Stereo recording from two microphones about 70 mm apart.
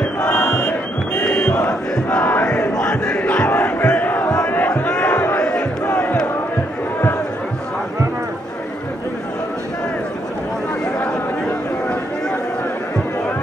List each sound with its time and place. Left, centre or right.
0.3 s crowd: centre
2.0 s crowd: left
2.4 s crowd: centre
5.9 s crowd: left